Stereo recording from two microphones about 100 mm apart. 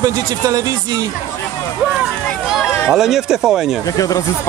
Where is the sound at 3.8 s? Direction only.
35° left (ahead or behind).